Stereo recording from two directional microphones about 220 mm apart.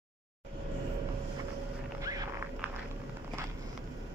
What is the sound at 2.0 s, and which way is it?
Walk, 15° right (ahead or behind).